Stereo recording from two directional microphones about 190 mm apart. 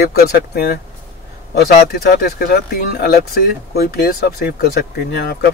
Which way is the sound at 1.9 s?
55° left (ahead or behind).